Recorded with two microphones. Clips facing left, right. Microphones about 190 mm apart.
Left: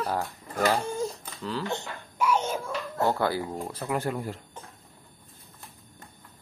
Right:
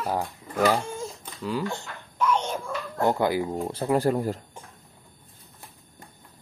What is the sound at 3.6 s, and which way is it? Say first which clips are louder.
Speech: right 9 dB; 30° right (ahead or behind).